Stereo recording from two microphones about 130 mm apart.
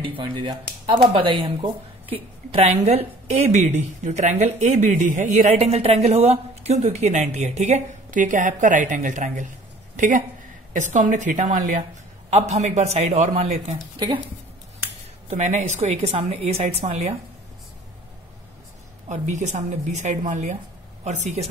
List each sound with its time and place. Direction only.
0.0 s speech: 40° right (ahead or behind); by 5.6 s 65° right (ahead or behind)
5.6 s a woman's voice: 50° right (ahead or behind); by 11.8 s 80° right
12.3 s speech: 60° right (ahead or behind)
13.9 s a woman's voice: 35° right (ahead or behind)
15.2 s speech: 65° right (ahead or behind)
19.0 s speech: 65° right (ahead or behind)